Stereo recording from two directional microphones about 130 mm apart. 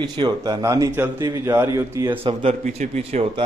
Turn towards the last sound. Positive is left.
turn(degrees=-55)  # may be behind; listen again after turning